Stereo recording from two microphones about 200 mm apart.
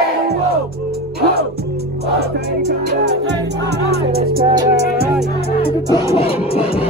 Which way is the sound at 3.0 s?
60° right (ahead or behind).